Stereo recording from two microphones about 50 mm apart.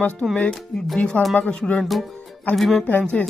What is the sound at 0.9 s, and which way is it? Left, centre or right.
Speech, left.